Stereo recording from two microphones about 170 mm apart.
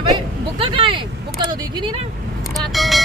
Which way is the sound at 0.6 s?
30° right (ahead or behind).